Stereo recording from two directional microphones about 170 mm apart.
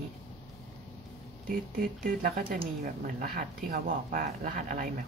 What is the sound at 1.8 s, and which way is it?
A woman's voice, 60° right (ahead or behind).